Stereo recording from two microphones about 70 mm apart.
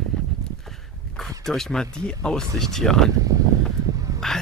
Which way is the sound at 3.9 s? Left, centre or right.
Right.